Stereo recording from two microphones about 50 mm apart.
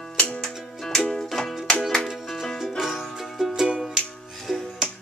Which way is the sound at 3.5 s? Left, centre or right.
Centre.